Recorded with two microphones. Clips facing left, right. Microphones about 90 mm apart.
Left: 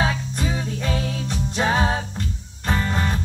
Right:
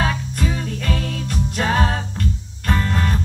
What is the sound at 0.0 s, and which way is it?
Music, 5° left (ahead or behind).